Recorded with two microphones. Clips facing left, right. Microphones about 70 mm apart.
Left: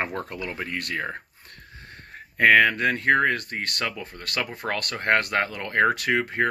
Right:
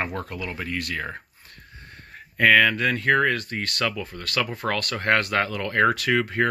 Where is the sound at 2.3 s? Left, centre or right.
Left.